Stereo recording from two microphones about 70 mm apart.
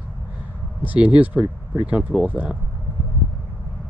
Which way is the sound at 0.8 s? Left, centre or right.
Centre.